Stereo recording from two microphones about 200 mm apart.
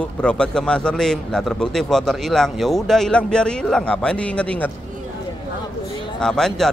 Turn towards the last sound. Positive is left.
turn(degrees=0)  # may be behind; listen again after turning